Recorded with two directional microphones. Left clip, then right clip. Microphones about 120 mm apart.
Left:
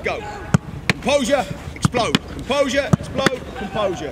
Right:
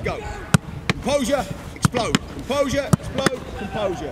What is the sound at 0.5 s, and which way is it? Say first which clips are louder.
Basketball bounce: right 2 dB; 40° right (ahead or behind).